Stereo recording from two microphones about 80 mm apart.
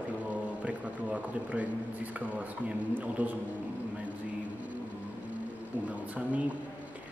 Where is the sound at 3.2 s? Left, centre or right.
Right.